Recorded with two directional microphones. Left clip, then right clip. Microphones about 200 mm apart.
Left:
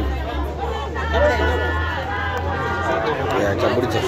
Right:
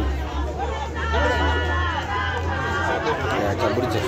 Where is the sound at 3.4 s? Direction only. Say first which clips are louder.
Left 3 dB; 5° left (ahead or behind).